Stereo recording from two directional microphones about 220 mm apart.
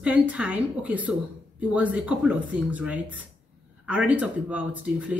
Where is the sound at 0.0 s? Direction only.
5° right (ahead or behind).